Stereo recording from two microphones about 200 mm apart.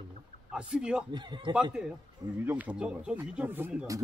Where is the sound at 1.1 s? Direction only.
20° right (ahead or behind).